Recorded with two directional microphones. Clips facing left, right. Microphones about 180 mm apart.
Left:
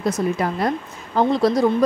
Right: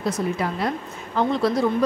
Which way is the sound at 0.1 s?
45° left (ahead or behind).